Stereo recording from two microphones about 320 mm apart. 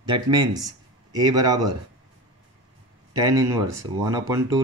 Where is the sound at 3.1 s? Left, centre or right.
Centre.